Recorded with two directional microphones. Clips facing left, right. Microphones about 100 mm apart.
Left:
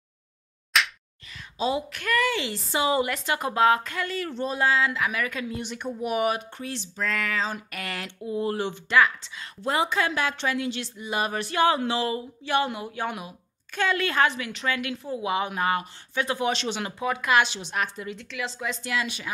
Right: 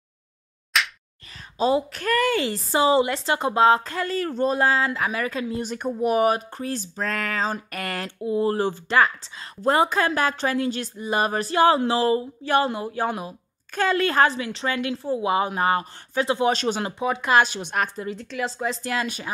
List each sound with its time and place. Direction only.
0.7 s slap: centre (ahead or behind)
1.3 s a woman's voice: 40° right (ahead or behind)
8.2 s a woman's voice: 25° right (ahead or behind)
16.5 s a woman's voice: 40° right (ahead or behind)
17.0 s speech: 25° right (ahead or behind)
17.4 s a woman's voice: 50° right (ahead or behind)